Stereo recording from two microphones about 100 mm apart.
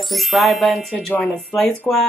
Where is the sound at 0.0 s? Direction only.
Centre (ahead or behind).